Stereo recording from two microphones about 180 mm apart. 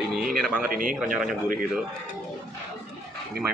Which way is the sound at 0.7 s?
50° right (ahead or behind).